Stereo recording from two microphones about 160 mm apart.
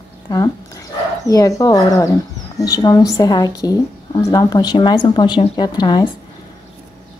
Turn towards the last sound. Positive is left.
turn(degrees=25)  # may be behind; listen again after turning